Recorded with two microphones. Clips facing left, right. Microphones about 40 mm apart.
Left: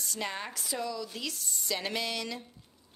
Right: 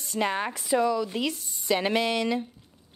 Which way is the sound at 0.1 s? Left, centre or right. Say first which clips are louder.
Right 10 dB; right.